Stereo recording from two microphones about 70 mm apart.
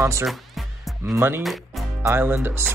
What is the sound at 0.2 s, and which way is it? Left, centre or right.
Music, centre.